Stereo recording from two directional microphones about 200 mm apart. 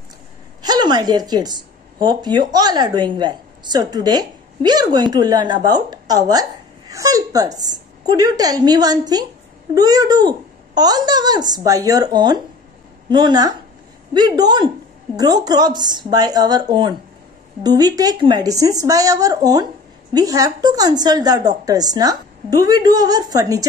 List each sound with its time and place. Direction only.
0.6 s a woman's voice: 20° right (ahead or behind)